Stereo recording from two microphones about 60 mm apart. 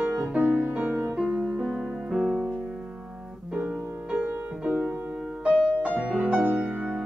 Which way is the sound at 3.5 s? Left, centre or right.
Right.